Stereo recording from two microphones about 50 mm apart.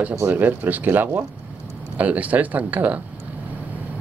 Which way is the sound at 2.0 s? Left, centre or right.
Right.